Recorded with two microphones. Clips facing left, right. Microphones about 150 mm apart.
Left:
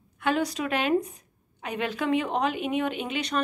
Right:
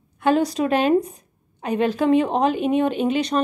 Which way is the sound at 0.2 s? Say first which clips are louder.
Right 7 dB; 35° right (ahead or behind).